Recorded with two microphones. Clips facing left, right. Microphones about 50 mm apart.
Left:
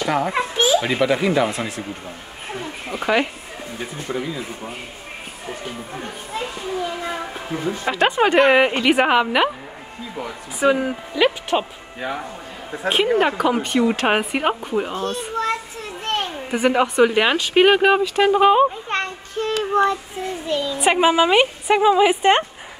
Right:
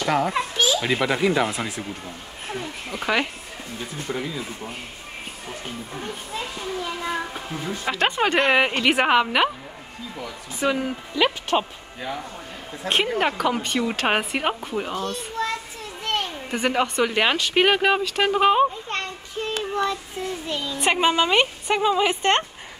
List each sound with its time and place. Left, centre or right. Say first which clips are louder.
0.0 s a child's voice: left 1 dB; centre
0.3 s a child's voice: left 4 dB; left
0.8 s a woman's voice: left 3 dB; centre
2.5 s a woman's voice: left 2 dB; centre
5.9 s a woman's voice: left 2 dB; centre
10.6 s speech: left 5 dB; centre
12.8 s a woman's voice: left 4 dB; centre
15.0 s children playing: left 3 dB; left
16.4 s a woman's voice: left 6 dB; centre
19.7 s child singing: left 7 dB; left
20.4 s a woman's voice: left 5 dB; centre